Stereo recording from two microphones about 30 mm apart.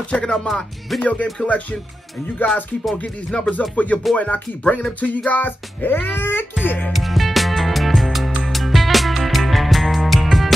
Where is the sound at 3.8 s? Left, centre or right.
Left.